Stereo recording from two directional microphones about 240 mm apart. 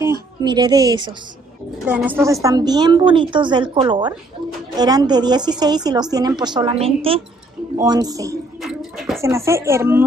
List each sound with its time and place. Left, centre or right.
0.4 s a woman's voice: centre
1.9 s a woman's voice: centre
8.6 s a sound: centre
9.2 s a woman's voice: centre